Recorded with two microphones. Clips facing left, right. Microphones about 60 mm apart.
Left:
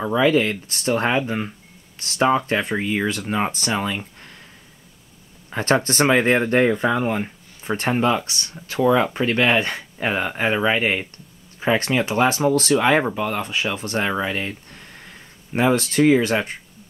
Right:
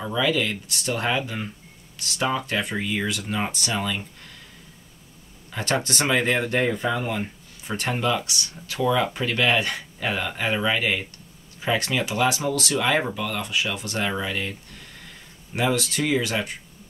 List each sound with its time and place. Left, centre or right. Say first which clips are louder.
0.0 s speech: left 6 dB; left
5.5 s speech: left 6 dB; left